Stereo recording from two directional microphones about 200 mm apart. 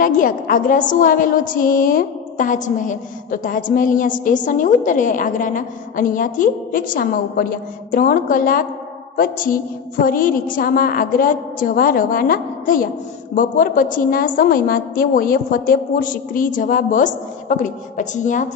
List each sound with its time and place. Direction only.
0.0 s a woman's voice: 40° left (ahead or behind)